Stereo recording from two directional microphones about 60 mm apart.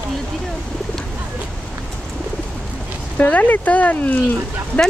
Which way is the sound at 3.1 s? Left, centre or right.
Left.